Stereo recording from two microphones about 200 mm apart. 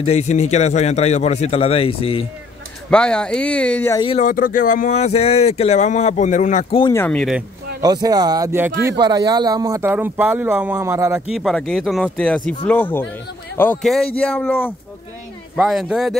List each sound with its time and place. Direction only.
0.0 s speech: 35° left (ahead or behind)
2.9 s speech: 5° left (ahead or behind)
4.2 s speech: 40° left (ahead or behind)
6.8 s speech: 15° left (ahead or behind)
7.8 s speech: 20° right (ahead or behind)
11.2 s speech: centre (ahead or behind)
15.5 s speech: centre (ahead or behind)